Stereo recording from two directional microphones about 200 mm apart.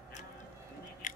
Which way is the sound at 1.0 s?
40° left (ahead or behind).